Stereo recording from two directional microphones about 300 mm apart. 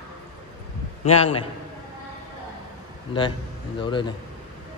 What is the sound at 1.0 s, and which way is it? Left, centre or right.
Speech, left.